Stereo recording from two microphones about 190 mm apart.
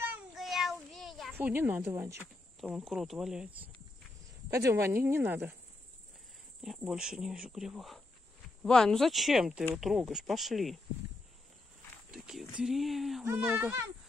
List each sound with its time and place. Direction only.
0.0 s child singing: 5° right (ahead or behind)
1.3 s speech: 10° right (ahead or behind)
2.7 s speech: centre (ahead or behind)
4.6 s speech: 15° right (ahead or behind)
6.6 s speech: centre (ahead or behind)
12.1 s speech: 5° right (ahead or behind)
13.2 s speech: 10° right (ahead or behind)